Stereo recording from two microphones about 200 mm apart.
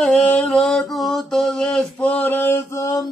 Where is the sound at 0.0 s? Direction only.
5° left (ahead or behind).